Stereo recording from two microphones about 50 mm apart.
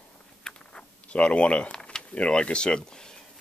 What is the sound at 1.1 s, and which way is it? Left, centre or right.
Speech, left.